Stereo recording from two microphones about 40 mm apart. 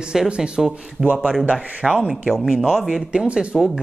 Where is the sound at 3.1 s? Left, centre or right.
Right.